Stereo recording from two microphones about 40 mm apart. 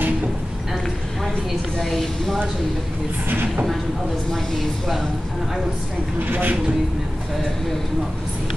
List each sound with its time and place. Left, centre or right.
1.8 s a woman's voice: centre
4.3 s speech: centre
6.1 s speech: right